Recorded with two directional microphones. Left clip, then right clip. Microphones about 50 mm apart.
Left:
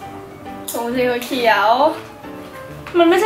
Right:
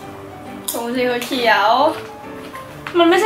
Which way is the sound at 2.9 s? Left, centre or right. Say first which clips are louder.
Even; centre.